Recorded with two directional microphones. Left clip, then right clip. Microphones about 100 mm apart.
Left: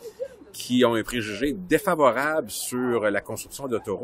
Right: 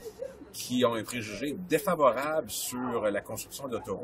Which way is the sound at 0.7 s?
40° left (ahead or behind).